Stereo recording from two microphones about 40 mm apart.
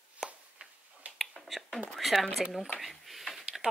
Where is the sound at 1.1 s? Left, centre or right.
Right.